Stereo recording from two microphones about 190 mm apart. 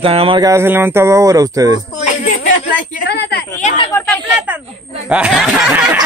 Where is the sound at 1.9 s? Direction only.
40° left (ahead or behind).